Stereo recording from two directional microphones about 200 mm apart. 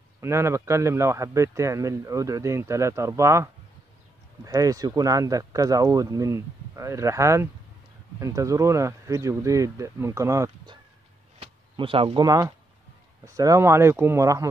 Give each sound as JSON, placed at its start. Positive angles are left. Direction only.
{"t": 0.2, "sound": "a man's voice", "side_deg": -15}
{"t": 4.5, "sound": "a man's voice", "side_deg": -15}
{"t": 11.3, "sound": "a man's voice", "side_deg": -25}